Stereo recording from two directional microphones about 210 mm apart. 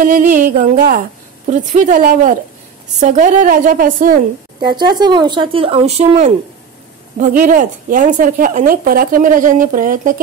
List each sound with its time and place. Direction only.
0.0 s a woman's voice: 40° right (ahead or behind)
4.6 s a woman's voice: 20° right (ahead or behind); by 10.2 s 40° right (ahead or behind)